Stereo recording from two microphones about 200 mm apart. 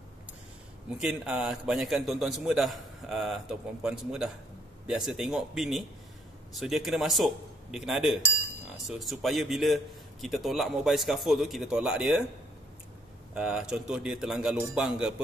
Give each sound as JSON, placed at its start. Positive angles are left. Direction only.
{"t": 0.9, "sound": "a man's voice", "side_deg": -5}
{"t": 13.3, "sound": "a man's voice", "side_deg": -5}